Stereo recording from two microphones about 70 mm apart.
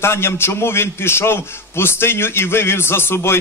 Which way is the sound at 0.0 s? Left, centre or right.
Left.